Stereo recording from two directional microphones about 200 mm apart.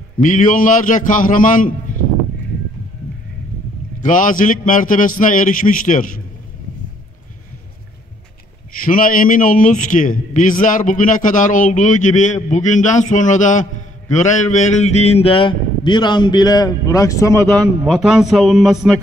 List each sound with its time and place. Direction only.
0.2 s a man's voice: 40° left (ahead or behind)
4.0 s a man's voice: 40° left (ahead or behind)
8.8 s a man's voice: 45° left (ahead or behind); by 17.5 s 15° left (ahead or behind)
17.8 s a man's voice: centre (ahead or behind)